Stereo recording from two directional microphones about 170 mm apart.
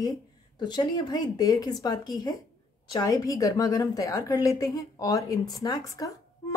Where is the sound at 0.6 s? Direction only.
25° left (ahead or behind).